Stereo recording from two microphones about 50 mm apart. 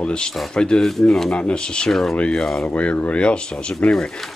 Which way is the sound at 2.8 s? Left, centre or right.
Left.